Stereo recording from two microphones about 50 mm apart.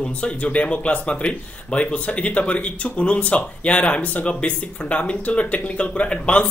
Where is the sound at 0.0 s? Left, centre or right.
Left.